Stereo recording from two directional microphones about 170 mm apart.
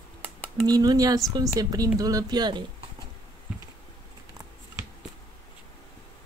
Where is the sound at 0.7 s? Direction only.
20° right (ahead or behind).